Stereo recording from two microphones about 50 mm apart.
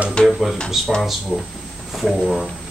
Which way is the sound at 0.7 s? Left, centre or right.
Centre.